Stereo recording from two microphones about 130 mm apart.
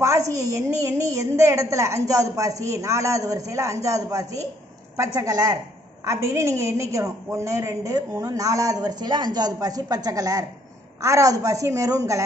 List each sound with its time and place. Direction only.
0.0 s a woman's voice: 25° right (ahead or behind)